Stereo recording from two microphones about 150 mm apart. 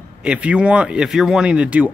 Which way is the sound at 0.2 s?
10° right (ahead or behind).